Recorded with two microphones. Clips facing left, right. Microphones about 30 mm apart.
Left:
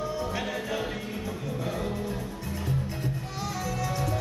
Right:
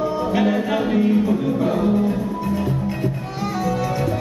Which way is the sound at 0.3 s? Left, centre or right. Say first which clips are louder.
Right 12 dB; right.